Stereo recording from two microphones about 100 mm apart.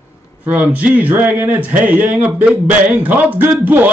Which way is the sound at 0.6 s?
15° right (ahead or behind).